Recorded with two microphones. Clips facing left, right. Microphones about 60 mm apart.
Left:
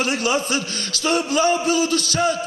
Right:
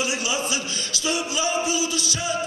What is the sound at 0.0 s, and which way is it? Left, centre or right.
A man's voice, left.